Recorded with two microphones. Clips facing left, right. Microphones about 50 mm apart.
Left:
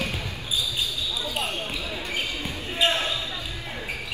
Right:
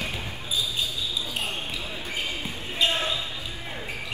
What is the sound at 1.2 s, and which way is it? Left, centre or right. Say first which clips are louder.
Basketball bounce: left 2 dB; left.